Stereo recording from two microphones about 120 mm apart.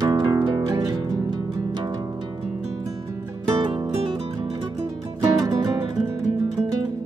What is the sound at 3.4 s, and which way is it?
Music, 35° right (ahead or behind).